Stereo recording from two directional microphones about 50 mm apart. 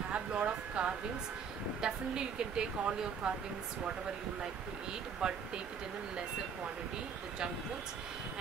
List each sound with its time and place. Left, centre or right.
0.1 s a sound: right
1.8 s speech: centre
5.2 s speech: centre